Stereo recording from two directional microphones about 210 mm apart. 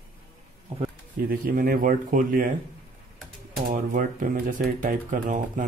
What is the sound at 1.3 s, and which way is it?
Speech, 45° right (ahead or behind).